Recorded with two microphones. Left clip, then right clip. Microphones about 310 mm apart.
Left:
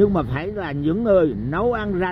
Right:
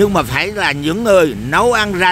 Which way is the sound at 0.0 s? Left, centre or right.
Right.